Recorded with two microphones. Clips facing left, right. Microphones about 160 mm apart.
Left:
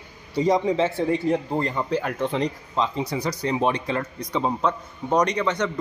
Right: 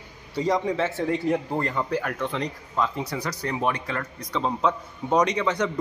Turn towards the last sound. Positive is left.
turn(degrees=-5)  # may be behind; listen again after turning